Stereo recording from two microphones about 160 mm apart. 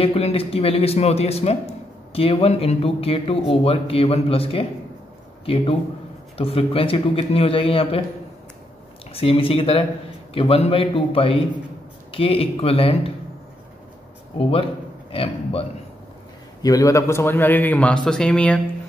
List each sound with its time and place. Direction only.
0.0 s a man's voice: 35° left (ahead or behind)
9.1 s speech: 35° left (ahead or behind)
14.4 s a man's voice: 35° left (ahead or behind)
16.6 s a man's voice: 20° left (ahead or behind)